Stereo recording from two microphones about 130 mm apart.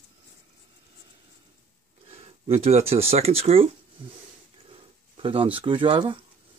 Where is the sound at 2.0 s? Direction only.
50° right (ahead or behind).